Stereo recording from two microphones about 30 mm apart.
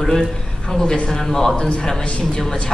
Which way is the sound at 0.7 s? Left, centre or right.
Left.